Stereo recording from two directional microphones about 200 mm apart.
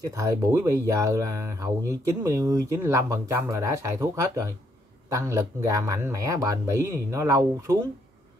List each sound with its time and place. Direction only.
0.0 s speech: 15° right (ahead or behind)